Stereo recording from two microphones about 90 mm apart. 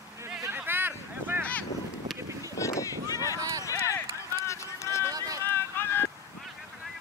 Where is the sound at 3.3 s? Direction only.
40° right (ahead or behind).